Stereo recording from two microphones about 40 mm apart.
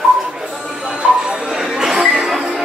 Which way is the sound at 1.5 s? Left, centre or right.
Centre.